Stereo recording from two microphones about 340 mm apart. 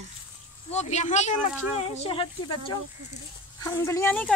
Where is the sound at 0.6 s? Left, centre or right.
Centre.